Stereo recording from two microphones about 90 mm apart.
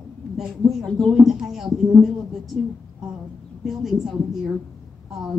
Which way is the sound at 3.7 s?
5° right (ahead or behind).